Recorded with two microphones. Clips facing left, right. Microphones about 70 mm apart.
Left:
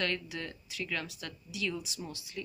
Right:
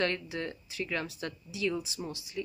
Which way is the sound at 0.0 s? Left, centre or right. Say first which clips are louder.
Right 3 dB; right.